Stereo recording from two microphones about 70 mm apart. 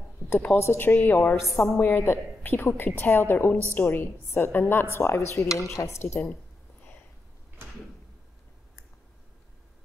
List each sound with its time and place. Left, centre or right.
0.6 s a woman's voice: left
1.4 s a woman's voice: centre
1.8 s a woman's voice: left